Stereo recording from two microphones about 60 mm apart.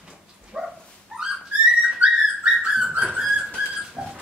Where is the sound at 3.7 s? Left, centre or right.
Centre.